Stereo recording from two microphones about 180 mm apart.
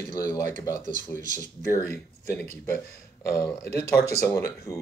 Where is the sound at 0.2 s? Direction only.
20° left (ahead or behind).